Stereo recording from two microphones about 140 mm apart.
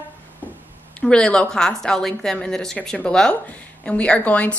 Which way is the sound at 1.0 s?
5° left (ahead or behind).